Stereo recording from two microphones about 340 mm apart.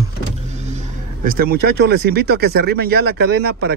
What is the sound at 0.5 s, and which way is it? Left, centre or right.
Speech, centre.